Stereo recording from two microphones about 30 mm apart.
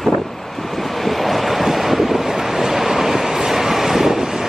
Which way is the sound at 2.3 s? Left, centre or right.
Centre.